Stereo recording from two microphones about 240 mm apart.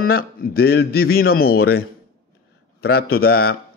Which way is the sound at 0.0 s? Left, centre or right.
Left.